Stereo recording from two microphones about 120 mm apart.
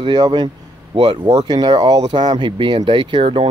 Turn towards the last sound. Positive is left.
turn(degrees=-45)  # may be behind; listen again after turning